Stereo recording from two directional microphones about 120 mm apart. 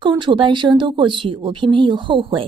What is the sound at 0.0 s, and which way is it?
Speech, 40° right (ahead or behind).